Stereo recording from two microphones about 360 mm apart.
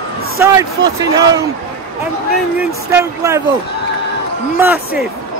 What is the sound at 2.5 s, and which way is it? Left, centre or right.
Speech, centre.